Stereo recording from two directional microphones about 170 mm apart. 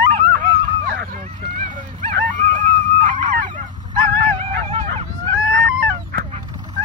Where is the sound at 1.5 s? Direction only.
45° right (ahead or behind).